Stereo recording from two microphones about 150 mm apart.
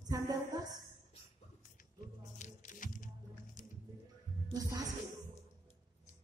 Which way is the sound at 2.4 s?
60° left (ahead or behind).